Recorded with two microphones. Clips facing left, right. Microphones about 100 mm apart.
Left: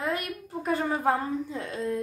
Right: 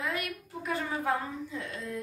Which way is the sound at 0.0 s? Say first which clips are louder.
Left 4 dB; 35° left (ahead or behind).